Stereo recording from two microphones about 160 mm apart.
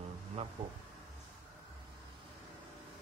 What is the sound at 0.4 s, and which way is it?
Speech, 40° right (ahead or behind).